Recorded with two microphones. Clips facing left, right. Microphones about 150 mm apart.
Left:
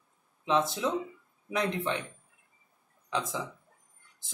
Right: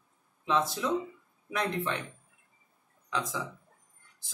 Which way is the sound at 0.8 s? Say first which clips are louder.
Even; 20° left (ahead or behind).